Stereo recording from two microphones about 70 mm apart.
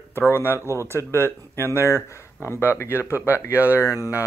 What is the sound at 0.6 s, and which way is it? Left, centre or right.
Speech, right.